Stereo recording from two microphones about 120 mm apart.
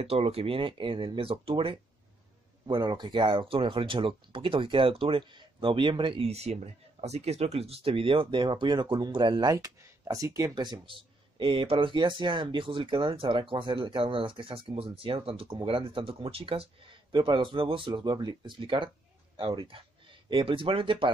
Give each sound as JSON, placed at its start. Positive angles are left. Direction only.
{"t": 0.0, "sound": "speech", "side_deg": -55}